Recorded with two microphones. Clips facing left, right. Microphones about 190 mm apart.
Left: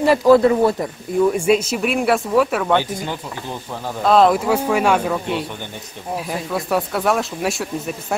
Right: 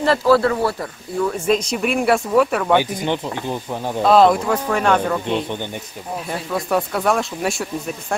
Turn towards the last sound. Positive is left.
turn(degrees=0)  # may be behind; listen again after turning